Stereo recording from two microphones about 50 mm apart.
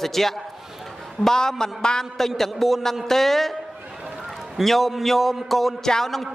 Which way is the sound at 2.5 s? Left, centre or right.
Centre.